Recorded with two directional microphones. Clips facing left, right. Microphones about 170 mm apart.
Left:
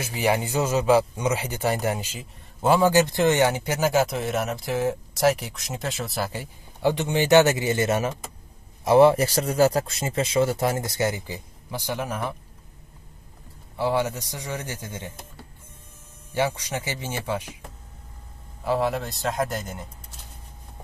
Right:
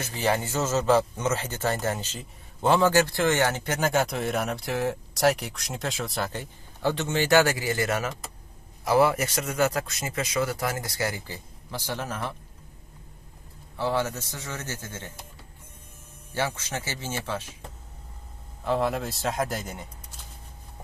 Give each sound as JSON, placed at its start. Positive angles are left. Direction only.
{"t": 0.0, "sound": "a man's voice", "side_deg": 10}
{"t": 13.7, "sound": "a man's voice", "side_deg": 15}
{"t": 16.3, "sound": "a man's voice", "side_deg": 15}
{"t": 18.6, "sound": "a man's voice", "side_deg": 0}